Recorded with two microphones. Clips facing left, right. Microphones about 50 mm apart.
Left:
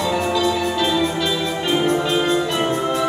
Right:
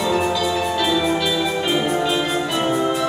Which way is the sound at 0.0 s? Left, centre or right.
Centre.